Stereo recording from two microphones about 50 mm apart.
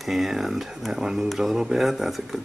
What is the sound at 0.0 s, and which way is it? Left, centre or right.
Speech, centre.